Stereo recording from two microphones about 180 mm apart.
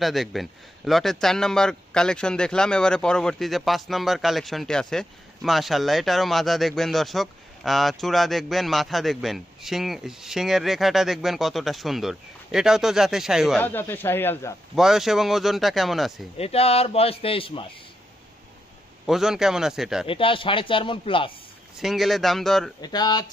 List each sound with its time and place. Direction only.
0.0 s a man's voice: centre (ahead or behind)
13.6 s a man's voice: 10° left (ahead or behind)
14.8 s a man's voice: centre (ahead or behind)
16.3 s a man's voice: 35° left (ahead or behind)
19.0 s a man's voice: centre (ahead or behind)
20.1 s speech: 30° left (ahead or behind)
21.7 s a man's voice: centre (ahead or behind)
22.8 s speech: 20° left (ahead or behind)